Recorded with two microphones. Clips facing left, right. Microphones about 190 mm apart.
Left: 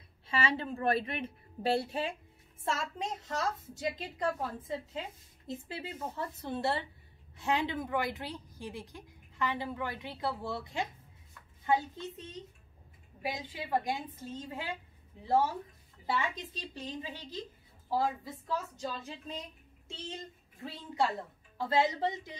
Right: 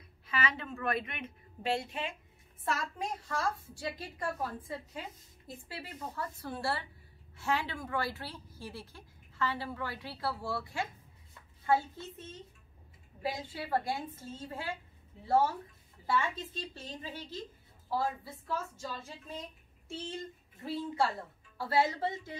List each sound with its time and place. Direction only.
0.3 s a woman's voice: 30° left (ahead or behind)
16.1 s a woman's voice: 15° left (ahead or behind)
20.6 s a woman's voice: 15° left (ahead or behind)